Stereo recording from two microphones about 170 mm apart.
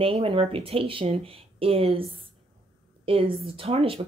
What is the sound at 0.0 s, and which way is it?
Speech, 35° right (ahead or behind).